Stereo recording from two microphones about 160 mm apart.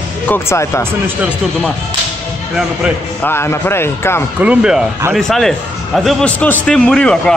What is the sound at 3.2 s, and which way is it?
Speech, 15° left (ahead or behind).